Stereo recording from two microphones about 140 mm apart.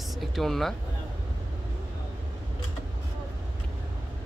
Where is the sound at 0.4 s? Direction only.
Centre (ahead or behind).